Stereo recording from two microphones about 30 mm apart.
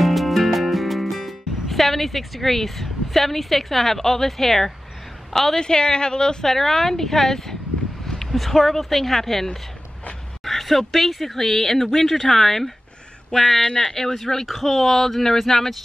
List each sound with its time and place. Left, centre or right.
0.0 s music: centre
5.3 s a woman's voice: centre
5.6 s a woman's voice: left
6.4 s speech: centre
13.6 s a woman's voice: left
13.9 s speech: centre